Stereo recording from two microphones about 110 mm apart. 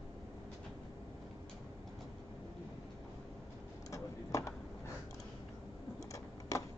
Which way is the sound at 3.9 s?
30° left (ahead or behind).